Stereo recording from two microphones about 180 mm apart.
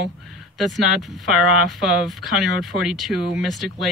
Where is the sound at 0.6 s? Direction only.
Centre (ahead or behind).